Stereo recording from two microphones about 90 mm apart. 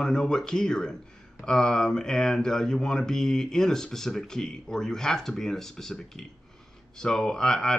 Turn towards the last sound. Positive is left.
turn(degrees=5)  # may be behind; listen again after turning